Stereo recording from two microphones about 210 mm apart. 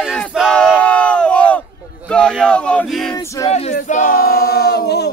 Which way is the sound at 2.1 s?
5° left (ahead or behind).